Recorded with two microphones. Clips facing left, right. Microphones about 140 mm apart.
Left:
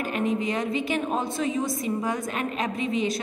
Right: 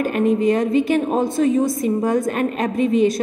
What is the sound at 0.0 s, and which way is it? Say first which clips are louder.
A woman's voice: right 9 dB; 50° right (ahead or behind).